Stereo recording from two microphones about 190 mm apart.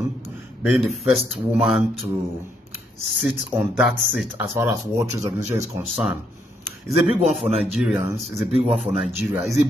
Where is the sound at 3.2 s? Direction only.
5° right (ahead or behind).